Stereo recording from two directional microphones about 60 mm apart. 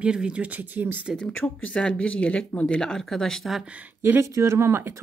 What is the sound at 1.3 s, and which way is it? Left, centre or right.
Speech, left.